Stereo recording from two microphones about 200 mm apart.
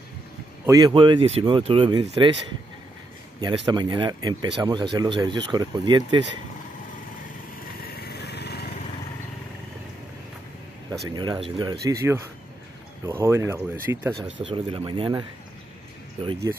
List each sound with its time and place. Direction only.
0.7 s speech: 20° right (ahead or behind)
3.3 s speech: 20° right (ahead or behind)
7.8 s lawn mower: 55° left (ahead or behind)
11.1 s speech: 20° right (ahead or behind)
14.2 s speech: 25° right (ahead or behind)